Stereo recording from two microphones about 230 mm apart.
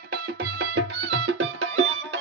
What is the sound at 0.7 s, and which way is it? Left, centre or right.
Music, right.